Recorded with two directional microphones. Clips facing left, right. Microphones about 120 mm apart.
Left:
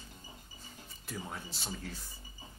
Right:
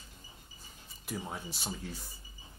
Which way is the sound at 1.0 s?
15° right (ahead or behind).